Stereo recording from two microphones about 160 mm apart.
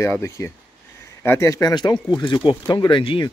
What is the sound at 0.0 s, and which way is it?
Speech, 20° left (ahead or behind).